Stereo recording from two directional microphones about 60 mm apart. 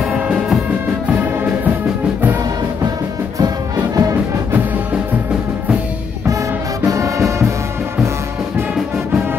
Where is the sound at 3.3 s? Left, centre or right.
Right.